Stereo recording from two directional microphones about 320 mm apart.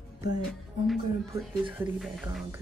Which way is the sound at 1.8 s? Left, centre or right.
Centre.